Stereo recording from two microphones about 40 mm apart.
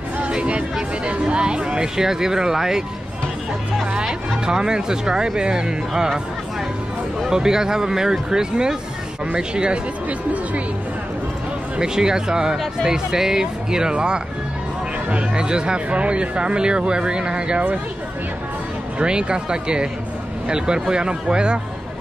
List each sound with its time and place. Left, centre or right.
0.2 s a sound: right
1.3 s speech: right
4.5 s speech: centre
7.2 s speech: centre
10.0 s speech: right
11.8 s speech: centre
15.3 s speech: right
18.9 s speech: right